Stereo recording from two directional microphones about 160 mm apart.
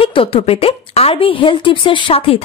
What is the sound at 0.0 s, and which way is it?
Speech, 35° left (ahead or behind).